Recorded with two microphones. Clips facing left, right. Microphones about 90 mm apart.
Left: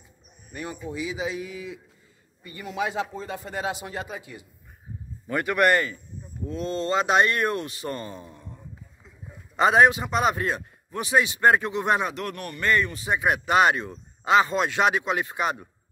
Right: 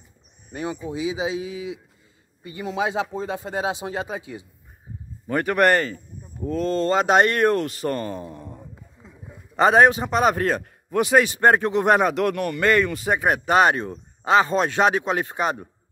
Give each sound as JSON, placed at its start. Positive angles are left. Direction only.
{"t": 0.6, "sound": "speech", "side_deg": -20}
{"t": 1.4, "sound": "a man's voice", "side_deg": -90}
{"t": 2.5, "sound": "speech", "side_deg": -25}
{"t": 5.3, "sound": "speech", "side_deg": -40}
{"t": 6.4, "sound": "speech", "side_deg": -50}
{"t": 9.6, "sound": "speech", "side_deg": -40}
{"t": 11.3, "sound": "speech", "side_deg": -40}
{"t": 12.2, "sound": "a man's voice", "side_deg": -90}
{"t": 13.0, "sound": "speech", "side_deg": -55}
{"t": 13.3, "sound": "speech", "side_deg": -40}